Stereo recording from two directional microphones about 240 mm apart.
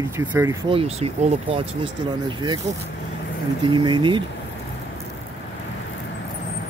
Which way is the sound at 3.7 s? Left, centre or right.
Centre.